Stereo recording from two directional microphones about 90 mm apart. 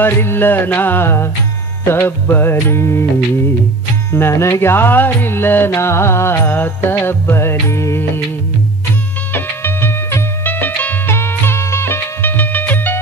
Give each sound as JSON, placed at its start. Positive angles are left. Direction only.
{"t": 0.0, "sound": "music", "side_deg": 25}
{"t": 4.1, "sound": "music", "side_deg": 30}
{"t": 9.3, "sound": "music", "side_deg": 25}